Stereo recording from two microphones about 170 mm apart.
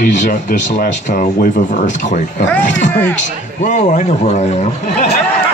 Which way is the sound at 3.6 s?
45° left (ahead or behind).